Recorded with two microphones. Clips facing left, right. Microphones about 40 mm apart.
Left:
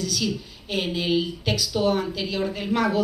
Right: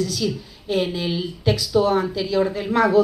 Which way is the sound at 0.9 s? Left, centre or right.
Left.